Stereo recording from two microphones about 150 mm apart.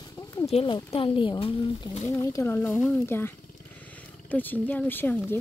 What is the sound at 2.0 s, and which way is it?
Speech, 20° left (ahead or behind).